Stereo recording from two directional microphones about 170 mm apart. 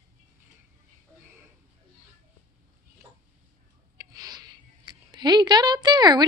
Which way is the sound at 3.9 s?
20° right (ahead or behind).